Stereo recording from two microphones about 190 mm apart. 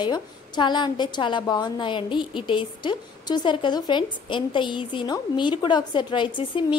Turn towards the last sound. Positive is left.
turn(degrees=25)  # may be behind; listen again after turning